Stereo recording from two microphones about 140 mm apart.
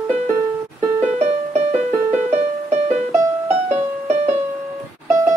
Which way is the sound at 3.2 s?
15° right (ahead or behind).